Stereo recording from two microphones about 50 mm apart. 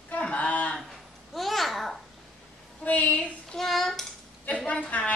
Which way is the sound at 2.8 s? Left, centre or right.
Left.